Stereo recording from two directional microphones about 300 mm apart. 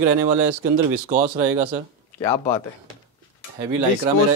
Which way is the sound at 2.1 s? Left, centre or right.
Centre.